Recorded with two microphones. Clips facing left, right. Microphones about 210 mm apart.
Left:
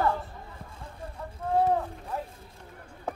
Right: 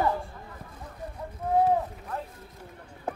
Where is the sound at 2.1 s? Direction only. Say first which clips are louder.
Left 1 dB; 10° left (ahead or behind).